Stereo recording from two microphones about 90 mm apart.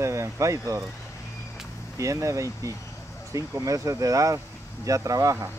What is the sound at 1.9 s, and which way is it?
Speech, 35° right (ahead or behind).